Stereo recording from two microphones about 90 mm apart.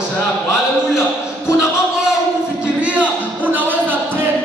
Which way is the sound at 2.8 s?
15° right (ahead or behind).